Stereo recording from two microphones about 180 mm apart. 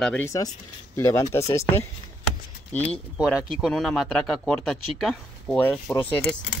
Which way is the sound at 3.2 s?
5° right (ahead or behind).